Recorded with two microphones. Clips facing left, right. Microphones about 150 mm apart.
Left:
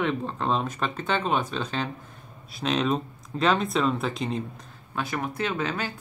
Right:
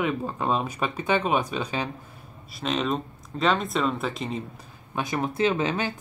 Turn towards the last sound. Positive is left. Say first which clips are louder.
# right 4 dB
turn(degrees=-20)  # may be behind; listen again after turning